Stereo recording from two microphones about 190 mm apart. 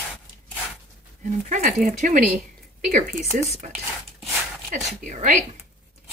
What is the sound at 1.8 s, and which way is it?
Speech, 40° right (ahead or behind).